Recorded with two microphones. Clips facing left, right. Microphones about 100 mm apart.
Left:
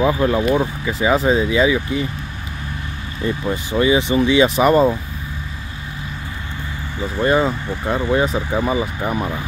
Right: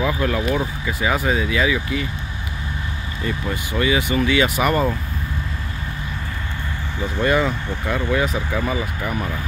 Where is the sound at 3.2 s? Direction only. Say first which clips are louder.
Left 4 dB; 25° left (ahead or behind).